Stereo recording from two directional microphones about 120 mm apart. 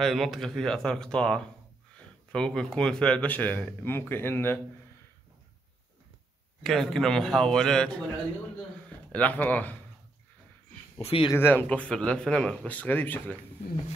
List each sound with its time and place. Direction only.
0.0 s speech: centre (ahead or behind); by 4.6 s 15° left (ahead or behind)
6.6 s speech: 5° left (ahead or behind)
11.0 s speech: 55° left (ahead or behind)
11.3 s speech: 15° left (ahead or behind)